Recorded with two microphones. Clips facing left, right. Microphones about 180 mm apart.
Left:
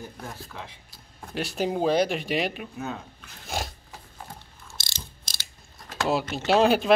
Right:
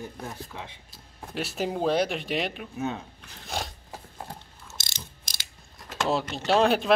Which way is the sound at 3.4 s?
5° left (ahead or behind).